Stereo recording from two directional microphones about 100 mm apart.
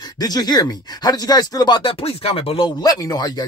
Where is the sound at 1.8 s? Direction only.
70° left (ahead or behind).